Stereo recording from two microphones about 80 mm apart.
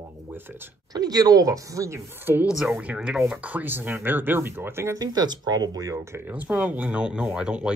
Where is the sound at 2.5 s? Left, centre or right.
Centre.